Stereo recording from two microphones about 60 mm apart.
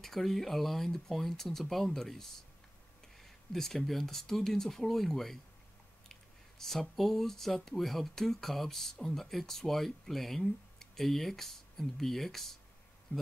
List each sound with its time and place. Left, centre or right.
0.0 s speech: centre
6.6 s speech: centre
13.1 s bee: left